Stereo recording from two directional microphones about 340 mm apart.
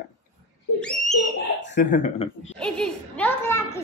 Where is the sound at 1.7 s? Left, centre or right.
Left.